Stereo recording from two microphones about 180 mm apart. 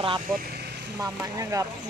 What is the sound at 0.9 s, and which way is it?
Speech, 20° right (ahead or behind).